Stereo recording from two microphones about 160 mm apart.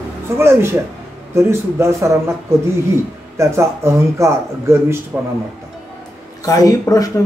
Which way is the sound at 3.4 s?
15° right (ahead or behind).